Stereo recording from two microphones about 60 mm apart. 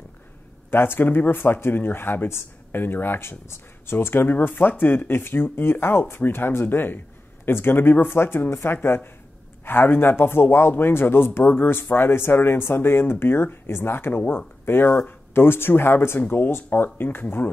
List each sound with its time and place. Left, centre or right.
0.7 s speech: left